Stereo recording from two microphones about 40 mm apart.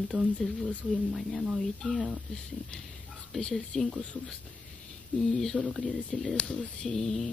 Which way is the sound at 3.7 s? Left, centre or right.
Centre.